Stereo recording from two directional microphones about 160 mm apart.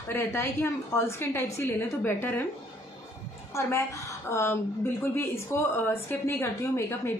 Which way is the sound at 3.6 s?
15° left (ahead or behind).